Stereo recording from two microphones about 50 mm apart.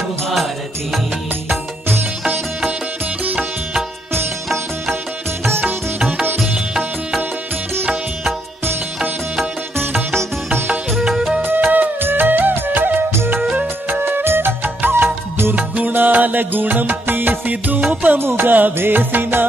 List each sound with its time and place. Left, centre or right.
11.1 s music: centre
11.4 s music: right
15.5 s music: right
18.2 s music: right